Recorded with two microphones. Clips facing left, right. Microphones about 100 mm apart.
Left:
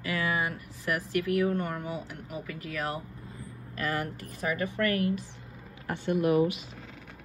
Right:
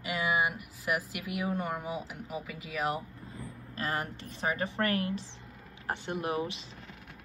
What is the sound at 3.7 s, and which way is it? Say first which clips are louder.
Speech: left 2 dB; 30° right (ahead or behind).